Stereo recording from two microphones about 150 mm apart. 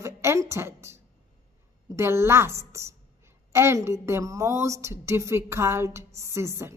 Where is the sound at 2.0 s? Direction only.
15° right (ahead or behind).